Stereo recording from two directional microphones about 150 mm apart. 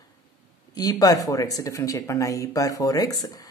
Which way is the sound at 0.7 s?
25° left (ahead or behind).